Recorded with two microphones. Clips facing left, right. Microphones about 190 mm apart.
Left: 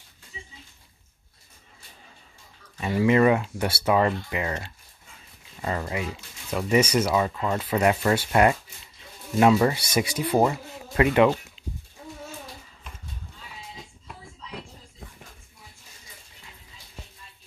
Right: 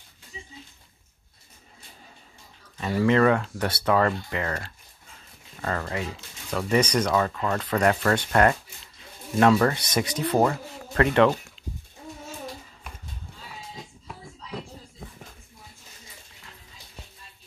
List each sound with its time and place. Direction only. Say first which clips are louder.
2.8 s speech: left 1 dB; 10° left (ahead or behind)